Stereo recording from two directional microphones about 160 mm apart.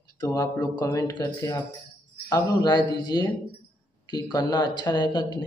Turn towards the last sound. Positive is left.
turn(degrees=25)  # may be behind; listen again after turning